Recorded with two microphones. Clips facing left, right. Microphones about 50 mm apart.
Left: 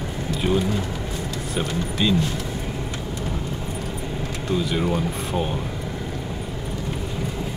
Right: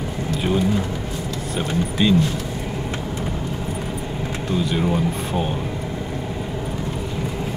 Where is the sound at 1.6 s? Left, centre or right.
Centre.